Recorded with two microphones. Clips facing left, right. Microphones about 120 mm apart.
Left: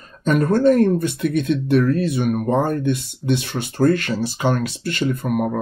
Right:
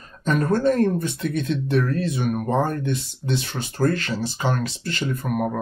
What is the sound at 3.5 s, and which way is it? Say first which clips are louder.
Speech: left 4 dB; 25° left (ahead or behind).